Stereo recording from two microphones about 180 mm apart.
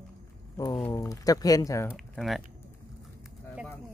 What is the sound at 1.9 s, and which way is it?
Speech, centre (ahead or behind).